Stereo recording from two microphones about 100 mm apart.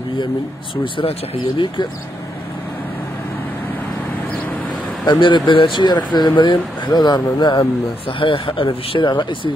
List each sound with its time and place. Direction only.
5.0 s speech: 50° left (ahead or behind)
8.2 s speech: 60° left (ahead or behind)